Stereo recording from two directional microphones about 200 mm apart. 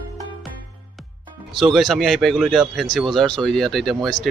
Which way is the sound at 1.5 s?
Centre (ahead or behind).